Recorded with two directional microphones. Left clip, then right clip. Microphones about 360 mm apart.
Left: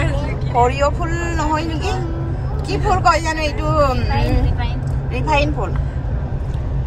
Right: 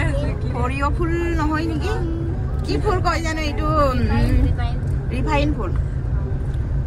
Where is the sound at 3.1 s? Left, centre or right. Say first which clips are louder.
Left 6 dB; centre.